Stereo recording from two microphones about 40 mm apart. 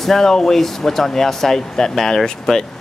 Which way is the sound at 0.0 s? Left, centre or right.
Centre.